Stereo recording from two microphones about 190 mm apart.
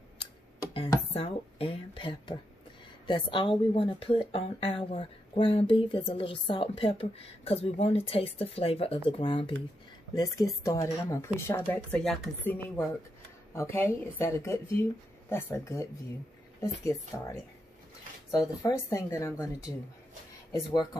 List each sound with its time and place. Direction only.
0.2 s a sound: 25° left (ahead or behind)
1.1 s speech: 30° left (ahead or behind)
20.5 s speech: 20° left (ahead or behind)